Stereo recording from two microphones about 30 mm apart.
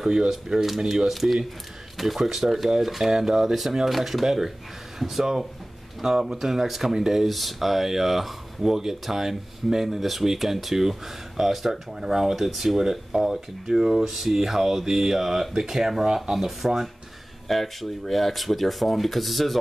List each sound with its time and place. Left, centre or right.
0.0 s speech: right
1.0 s speech: centre
17.5 s speech: centre